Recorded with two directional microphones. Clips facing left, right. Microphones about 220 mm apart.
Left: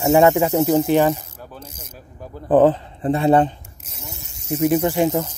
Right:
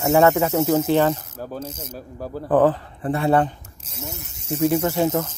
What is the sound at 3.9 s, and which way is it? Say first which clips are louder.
Snake: right 5 dB; 25° right (ahead or behind).